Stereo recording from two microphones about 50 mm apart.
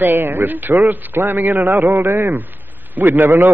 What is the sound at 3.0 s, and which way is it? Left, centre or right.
Speech, right.